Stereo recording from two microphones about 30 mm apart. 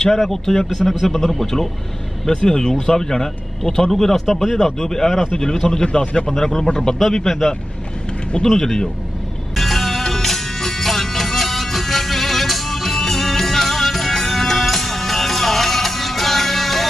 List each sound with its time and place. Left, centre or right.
0.1 s speech: centre
2.2 s speech: left
4.0 s speech: centre
4.7 s speech: centre
5.8 s a man's voice: left
6.2 s speech: centre
7.2 s speech: centre
8.5 s speech: centre
9.6 s music: centre